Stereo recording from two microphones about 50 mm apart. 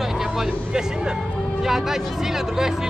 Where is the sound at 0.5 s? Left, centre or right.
Centre.